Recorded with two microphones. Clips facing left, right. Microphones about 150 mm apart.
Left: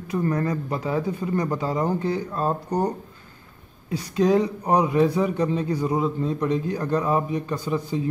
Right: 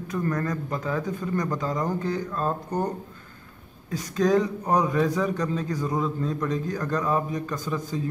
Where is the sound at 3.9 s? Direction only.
45° right (ahead or behind).